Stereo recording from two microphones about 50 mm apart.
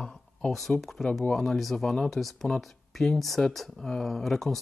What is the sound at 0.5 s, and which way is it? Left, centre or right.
Speech, centre.